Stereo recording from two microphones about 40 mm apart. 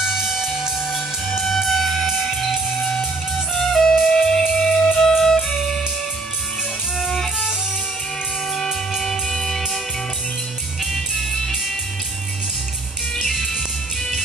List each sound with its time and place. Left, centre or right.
0.0 s music: centre
1.4 s music: centre
3.5 s music: centre
9.0 s music: centre
10.9 s music: centre
13.3 s music: centre